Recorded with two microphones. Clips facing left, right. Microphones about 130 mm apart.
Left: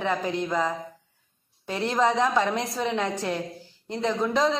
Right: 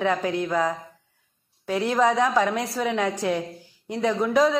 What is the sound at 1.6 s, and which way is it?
A woman's voice, 10° right (ahead or behind).